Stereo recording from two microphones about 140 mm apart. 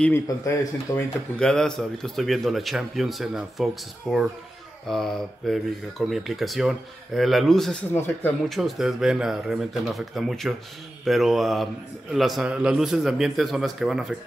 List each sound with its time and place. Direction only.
0.0 s speech: 15° left (ahead or behind)
1.4 s speech: 5° left (ahead or behind)